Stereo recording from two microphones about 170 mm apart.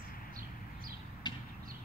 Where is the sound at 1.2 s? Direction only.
25° left (ahead or behind).